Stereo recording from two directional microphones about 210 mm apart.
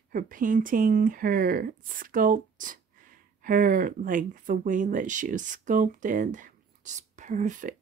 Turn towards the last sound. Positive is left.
turn(degrees=-35)  # may be behind; listen again after turning